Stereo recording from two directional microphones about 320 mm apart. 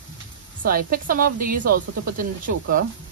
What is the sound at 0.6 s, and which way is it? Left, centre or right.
Speech, right.